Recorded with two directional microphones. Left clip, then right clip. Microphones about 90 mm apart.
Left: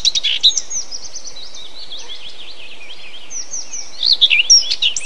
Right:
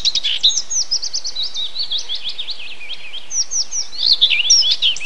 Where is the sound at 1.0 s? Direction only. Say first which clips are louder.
Right 9 dB; 20° right (ahead or behind).